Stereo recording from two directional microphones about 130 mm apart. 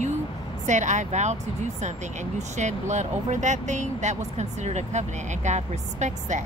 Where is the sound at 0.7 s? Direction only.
65° right (ahead or behind).